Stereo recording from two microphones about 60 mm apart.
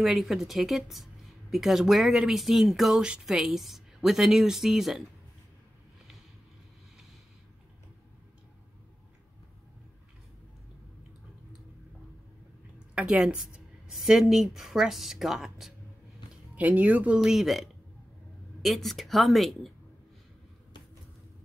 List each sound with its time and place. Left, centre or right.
0.0 s speech: centre
12.9 s a woman's voice: centre
13.8 s speech: centre
16.5 s speech: right
17.2 s speech: centre